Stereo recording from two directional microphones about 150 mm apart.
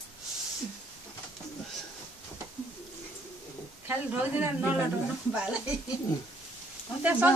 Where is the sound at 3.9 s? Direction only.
10° right (ahead or behind).